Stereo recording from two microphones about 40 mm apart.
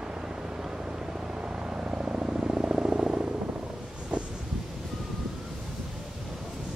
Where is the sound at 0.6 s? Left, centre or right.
Centre.